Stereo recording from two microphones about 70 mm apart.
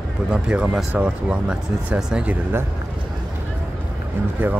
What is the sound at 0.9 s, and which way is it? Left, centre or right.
Speech, right.